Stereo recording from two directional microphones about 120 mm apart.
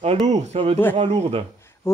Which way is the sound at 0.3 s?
70° right (ahead or behind).